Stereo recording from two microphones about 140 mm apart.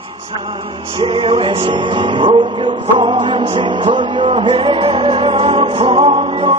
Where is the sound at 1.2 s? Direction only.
35° right (ahead or behind).